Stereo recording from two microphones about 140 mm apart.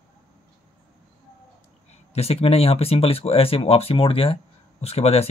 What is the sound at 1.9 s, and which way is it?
Speech, 45° left (ahead or behind).